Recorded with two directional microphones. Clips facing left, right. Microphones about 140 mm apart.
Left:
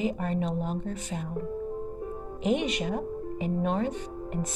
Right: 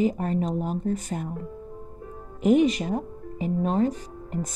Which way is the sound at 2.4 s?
40° right (ahead or behind).